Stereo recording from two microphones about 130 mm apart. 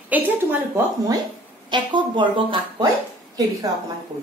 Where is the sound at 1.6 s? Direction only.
35° right (ahead or behind).